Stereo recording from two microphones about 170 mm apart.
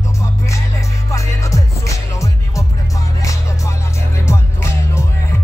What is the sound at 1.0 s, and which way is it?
Music, 20° left (ahead or behind).